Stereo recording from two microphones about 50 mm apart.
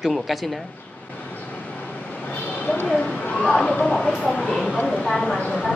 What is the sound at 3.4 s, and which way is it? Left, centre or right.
Speech, centre.